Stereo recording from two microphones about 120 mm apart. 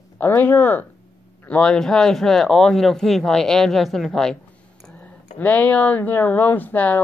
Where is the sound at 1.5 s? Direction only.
5° left (ahead or behind).